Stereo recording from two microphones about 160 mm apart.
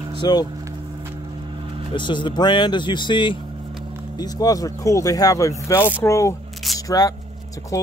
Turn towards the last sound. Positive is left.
turn(degrees=20)  # may be behind; listen again after turning